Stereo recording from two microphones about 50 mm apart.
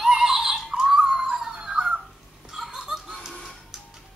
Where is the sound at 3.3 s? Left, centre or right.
Centre.